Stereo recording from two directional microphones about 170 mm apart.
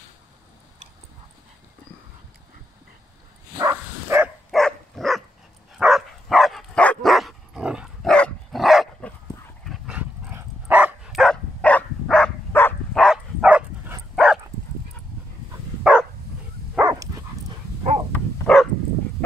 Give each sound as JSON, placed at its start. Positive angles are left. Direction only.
{"t": 3.5, "sound": "bow-wow", "side_deg": -15}
{"t": 4.5, "sound": "dog", "side_deg": 0}
{"t": 15.8, "sound": "dog", "side_deg": -5}
{"t": 16.7, "sound": "a sound", "side_deg": -15}
{"t": 18.5, "sound": "dog", "side_deg": 5}